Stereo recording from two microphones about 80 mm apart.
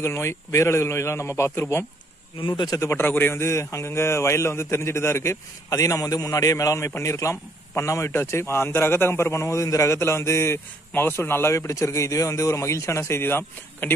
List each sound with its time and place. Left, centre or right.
0.0 s a man's voice: left
2.4 s speech: left
2.7 s a man's voice: left